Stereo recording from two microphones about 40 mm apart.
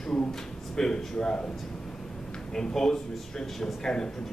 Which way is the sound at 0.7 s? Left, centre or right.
Centre.